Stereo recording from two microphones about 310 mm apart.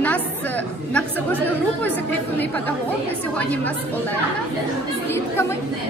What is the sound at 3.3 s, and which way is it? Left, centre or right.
Speech, centre.